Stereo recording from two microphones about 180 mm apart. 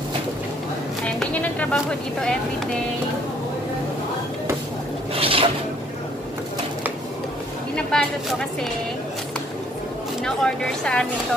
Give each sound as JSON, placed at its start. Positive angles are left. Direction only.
{"t": 1.0, "sound": "speech", "side_deg": 10}
{"t": 5.1, "sound": "a sound", "side_deg": -30}
{"t": 7.7, "sound": "speech", "side_deg": 5}
{"t": 10.2, "sound": "speech", "side_deg": 5}